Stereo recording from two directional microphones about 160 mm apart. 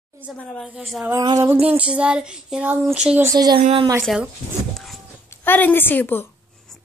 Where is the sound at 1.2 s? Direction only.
20° right (ahead or behind).